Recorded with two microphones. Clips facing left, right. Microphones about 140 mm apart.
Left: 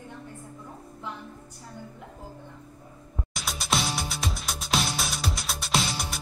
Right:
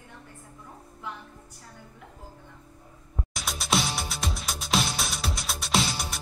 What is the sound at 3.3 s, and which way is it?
Music, centre (ahead or behind).